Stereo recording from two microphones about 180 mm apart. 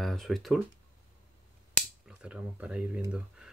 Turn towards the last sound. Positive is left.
turn(degrees=-5)  # may be behind; listen again after turning